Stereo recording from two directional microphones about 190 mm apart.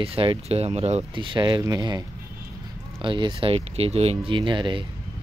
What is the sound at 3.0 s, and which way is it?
Speech, 25° right (ahead or behind).